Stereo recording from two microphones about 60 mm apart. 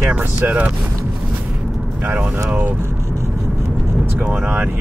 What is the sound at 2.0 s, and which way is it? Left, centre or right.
Speech, right.